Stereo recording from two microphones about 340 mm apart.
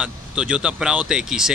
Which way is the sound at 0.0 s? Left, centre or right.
Centre.